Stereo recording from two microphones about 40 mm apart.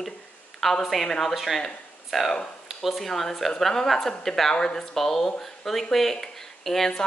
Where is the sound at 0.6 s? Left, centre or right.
Centre.